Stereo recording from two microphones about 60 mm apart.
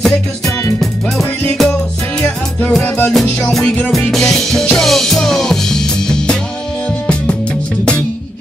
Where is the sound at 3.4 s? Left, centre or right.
Centre.